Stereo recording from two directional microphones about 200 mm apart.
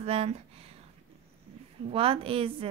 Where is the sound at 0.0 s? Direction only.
30° right (ahead or behind).